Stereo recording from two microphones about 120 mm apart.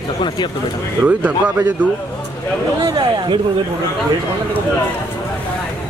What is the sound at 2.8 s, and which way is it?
Speech, 35° right (ahead or behind).